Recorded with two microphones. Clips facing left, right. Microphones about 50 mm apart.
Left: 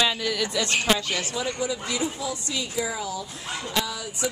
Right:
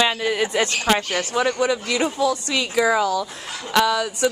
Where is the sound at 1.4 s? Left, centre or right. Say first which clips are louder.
Right 7 dB; right.